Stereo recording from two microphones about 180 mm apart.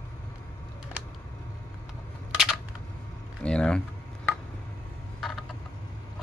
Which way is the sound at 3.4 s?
5° left (ahead or behind).